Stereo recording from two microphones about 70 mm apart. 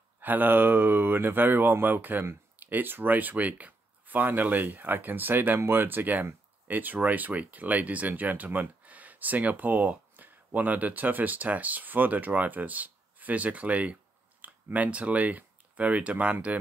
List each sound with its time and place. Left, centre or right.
0.2 s speech: right